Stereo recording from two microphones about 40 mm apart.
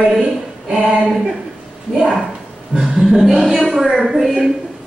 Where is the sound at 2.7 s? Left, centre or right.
Centre.